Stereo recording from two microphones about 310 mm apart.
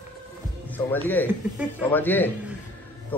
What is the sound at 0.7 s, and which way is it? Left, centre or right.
A man's voice, centre.